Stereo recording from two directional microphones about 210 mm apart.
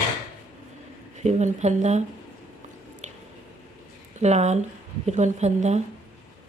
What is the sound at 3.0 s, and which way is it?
Squish, 35° right (ahead or behind).